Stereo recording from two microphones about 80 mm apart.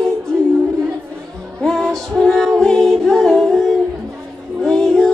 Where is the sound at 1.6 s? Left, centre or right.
Centre.